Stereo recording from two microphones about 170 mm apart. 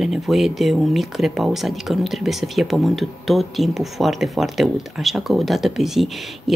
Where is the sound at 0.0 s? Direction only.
Centre (ahead or behind).